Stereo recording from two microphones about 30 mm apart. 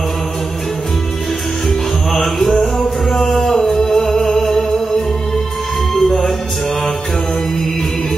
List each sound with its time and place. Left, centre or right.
2.1 s music: centre